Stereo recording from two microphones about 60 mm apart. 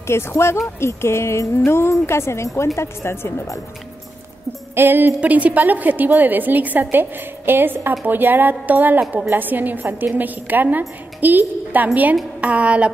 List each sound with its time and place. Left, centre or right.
0.0 s a woman's voice: left
4.7 s a woman's voice: right
5.2 s a woman's voice: right